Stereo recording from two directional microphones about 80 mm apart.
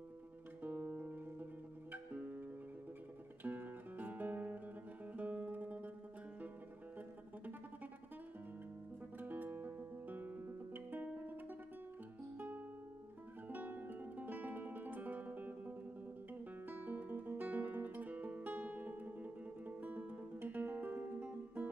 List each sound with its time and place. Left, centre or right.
0.6 s music: centre
3.4 s music: right
5.1 s guitar: centre
9.2 s music: right
16.6 s guitar: right